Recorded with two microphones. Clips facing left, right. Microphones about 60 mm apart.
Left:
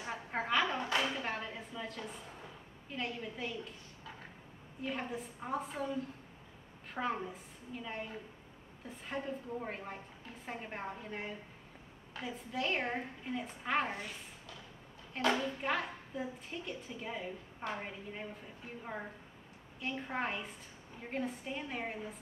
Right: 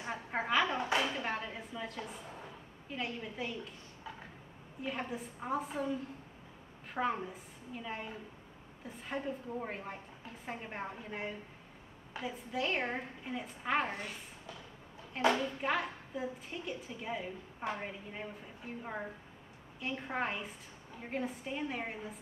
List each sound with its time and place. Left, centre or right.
0.1 s a sound: centre
2.9 s a woman's voice: centre
4.8 s a woman's voice: centre
6.9 s a woman's voice: centre
15.2 s a woman's voice: centre